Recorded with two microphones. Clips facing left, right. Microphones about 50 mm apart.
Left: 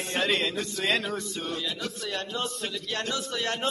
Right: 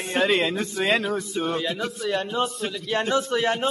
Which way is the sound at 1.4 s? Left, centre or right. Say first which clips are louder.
Right 7 dB; right.